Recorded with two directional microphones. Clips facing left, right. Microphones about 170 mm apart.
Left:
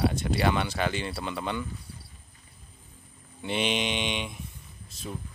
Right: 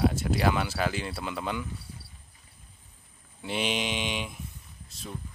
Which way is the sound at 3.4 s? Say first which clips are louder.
Left 2 dB; centre (ahead or behind).